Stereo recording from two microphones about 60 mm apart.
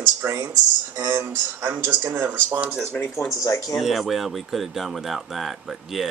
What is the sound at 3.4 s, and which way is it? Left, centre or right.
Speech, left.